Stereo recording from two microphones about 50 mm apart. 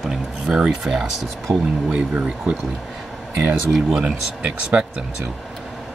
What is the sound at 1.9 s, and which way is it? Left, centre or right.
Speech, right.